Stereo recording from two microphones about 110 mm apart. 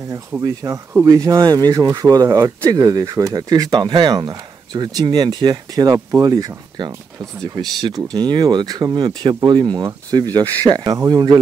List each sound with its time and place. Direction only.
0.4 s speech: 35° right (ahead or behind)